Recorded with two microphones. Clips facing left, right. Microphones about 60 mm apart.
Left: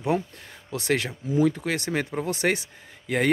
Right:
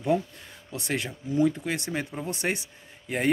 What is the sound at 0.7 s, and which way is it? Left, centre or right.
Speech, left.